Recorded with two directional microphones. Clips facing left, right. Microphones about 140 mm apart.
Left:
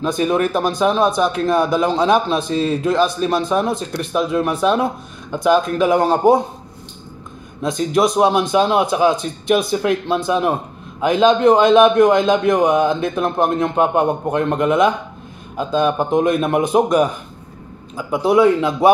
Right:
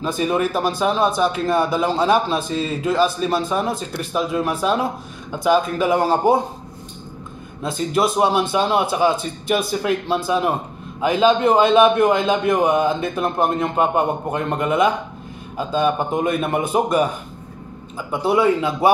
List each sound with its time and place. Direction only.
0.0 s a man's voice: centre (ahead or behind)
7.6 s a man's voice: 5° right (ahead or behind)